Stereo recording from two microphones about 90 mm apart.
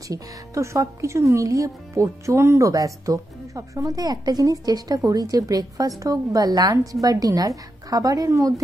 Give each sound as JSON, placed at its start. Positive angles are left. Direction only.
{"t": 0.1, "sound": "speech", "side_deg": -35}